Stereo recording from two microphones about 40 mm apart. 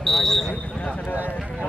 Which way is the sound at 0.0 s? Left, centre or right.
Centre.